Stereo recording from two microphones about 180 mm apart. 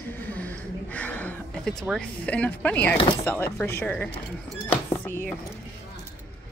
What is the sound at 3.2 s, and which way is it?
Speech, 10° left (ahead or behind).